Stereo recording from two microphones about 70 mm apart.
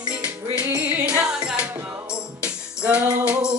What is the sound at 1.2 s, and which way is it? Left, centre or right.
Music, centre.